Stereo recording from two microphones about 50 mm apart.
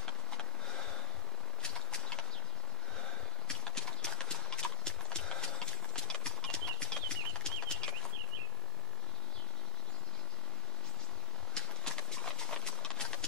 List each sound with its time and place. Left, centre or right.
0.0 s a sound: centre
3.4 s clip-clop: centre
11.5 s clip-clop: centre